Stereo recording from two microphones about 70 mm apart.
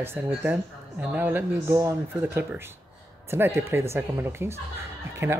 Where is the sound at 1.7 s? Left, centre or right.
Right.